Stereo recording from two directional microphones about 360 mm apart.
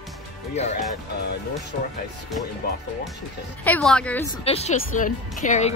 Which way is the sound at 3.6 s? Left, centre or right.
Centre.